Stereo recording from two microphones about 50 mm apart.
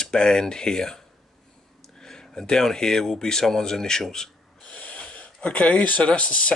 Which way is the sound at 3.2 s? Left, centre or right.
Centre.